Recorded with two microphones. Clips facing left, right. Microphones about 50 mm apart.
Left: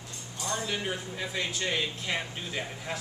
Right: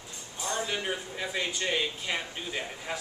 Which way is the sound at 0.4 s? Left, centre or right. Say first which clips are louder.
Right 1 dB; centre.